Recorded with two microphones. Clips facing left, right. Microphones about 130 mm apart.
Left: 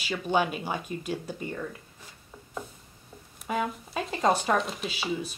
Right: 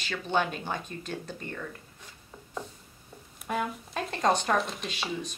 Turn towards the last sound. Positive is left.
turn(degrees=5)  # may be behind; listen again after turning